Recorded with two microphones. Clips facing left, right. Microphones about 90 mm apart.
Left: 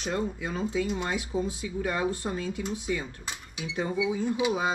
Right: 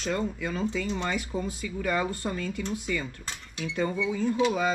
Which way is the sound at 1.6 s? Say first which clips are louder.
Even; 25° left (ahead or behind).